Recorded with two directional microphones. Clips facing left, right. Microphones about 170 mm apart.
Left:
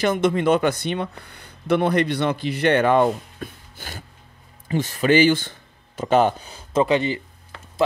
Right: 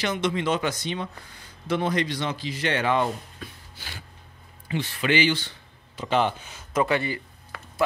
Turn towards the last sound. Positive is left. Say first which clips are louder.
# left 5 dB
turn(degrees=20)  # may be behind; listen again after turning